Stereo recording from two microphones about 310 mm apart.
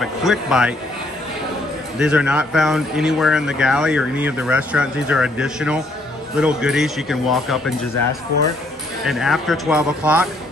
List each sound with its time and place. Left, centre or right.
0.0 s speech: centre
2.0 s speech: centre
9.0 s speech: centre